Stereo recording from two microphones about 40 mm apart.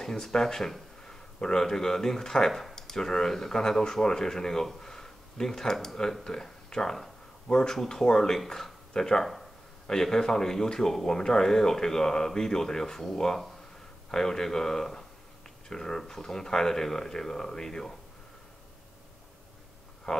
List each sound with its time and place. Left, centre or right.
0.0 s speech: centre
6.2 s a sound: centre
7.7 s speech: centre
20.1 s speech: centre